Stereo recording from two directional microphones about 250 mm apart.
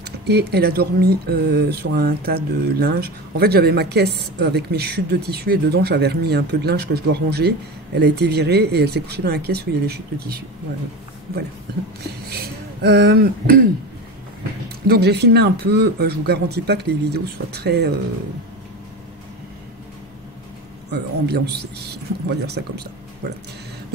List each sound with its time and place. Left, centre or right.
0.0 s speech: right
12.0 s speech: right
14.9 s speech: right
20.9 s speech: right